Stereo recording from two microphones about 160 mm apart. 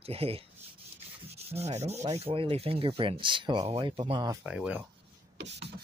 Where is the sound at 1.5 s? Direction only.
40° right (ahead or behind).